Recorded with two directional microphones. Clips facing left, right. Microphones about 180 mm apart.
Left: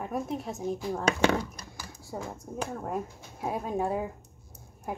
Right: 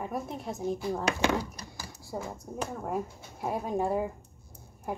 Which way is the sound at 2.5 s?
10° right (ahead or behind).